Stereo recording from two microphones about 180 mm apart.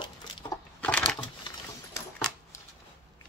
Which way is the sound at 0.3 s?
25° left (ahead or behind).